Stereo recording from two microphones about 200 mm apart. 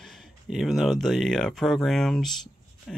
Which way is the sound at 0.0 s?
Centre (ahead or behind).